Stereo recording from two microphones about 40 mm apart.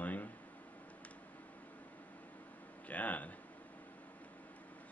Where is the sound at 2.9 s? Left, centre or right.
Left.